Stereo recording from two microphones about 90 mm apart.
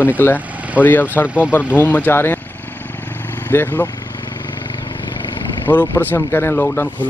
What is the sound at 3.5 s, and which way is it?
Speech, 20° left (ahead or behind).